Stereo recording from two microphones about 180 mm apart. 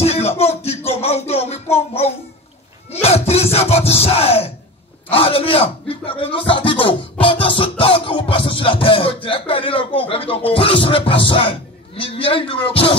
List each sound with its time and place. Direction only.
0.0 s music: 35° left (ahead or behind)
5.1 s speech: 30° left (ahead or behind)